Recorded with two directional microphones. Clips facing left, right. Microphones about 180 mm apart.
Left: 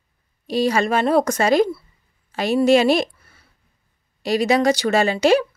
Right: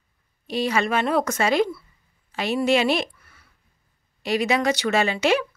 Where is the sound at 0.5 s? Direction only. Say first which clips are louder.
Left 4 dB; 40° left (ahead or behind).